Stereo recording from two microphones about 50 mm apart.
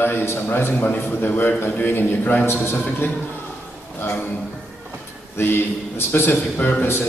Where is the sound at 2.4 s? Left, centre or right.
Left.